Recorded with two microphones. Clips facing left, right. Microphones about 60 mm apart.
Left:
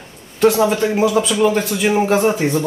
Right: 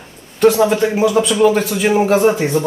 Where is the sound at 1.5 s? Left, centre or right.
Centre.